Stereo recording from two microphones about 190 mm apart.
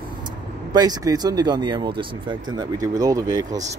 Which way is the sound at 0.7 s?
20° right (ahead or behind).